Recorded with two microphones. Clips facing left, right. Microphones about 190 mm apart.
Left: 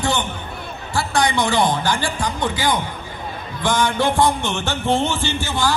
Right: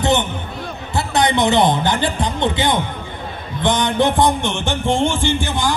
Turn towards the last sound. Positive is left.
turn(degrees=-15)  # may be behind; listen again after turning